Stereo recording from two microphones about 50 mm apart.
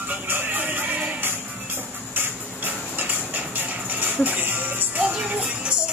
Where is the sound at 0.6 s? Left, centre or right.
Right.